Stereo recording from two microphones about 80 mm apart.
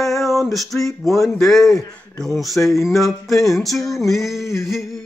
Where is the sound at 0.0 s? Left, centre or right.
Centre.